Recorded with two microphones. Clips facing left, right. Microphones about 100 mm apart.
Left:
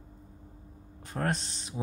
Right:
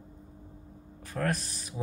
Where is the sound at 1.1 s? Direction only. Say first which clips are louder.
Even; 25° left (ahead or behind).